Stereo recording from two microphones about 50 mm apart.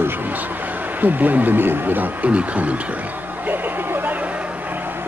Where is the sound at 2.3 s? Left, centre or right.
Right.